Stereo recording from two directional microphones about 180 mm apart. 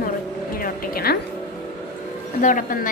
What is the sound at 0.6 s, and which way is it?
Music, 55° left (ahead or behind).